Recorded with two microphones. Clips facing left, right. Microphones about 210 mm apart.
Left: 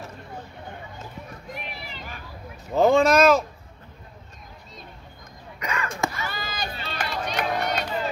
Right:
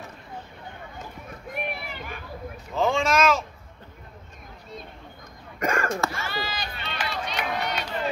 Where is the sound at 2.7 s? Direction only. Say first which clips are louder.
Left 6 dB; 40° left (ahead or behind).